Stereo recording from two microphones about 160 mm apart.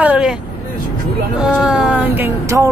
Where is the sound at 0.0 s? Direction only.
5° right (ahead or behind).